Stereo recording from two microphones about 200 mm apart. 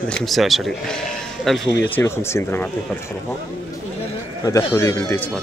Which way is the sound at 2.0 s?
10° left (ahead or behind).